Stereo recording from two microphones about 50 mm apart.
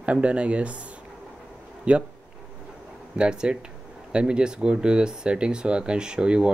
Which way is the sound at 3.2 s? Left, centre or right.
Centre.